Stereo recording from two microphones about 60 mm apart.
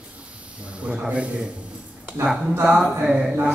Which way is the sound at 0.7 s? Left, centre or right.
Right.